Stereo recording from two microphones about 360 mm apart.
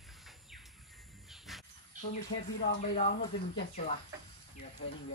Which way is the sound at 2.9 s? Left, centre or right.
Centre.